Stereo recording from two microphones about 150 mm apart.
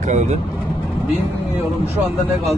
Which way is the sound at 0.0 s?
50° right (ahead or behind).